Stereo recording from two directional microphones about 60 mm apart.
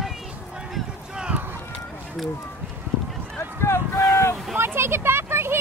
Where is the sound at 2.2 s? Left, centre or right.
Centre.